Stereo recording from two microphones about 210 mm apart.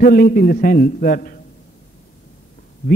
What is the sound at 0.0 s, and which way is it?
A man's voice, 45° left (ahead or behind).